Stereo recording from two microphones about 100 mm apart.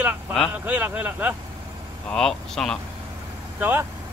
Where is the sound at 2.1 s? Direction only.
5° left (ahead or behind).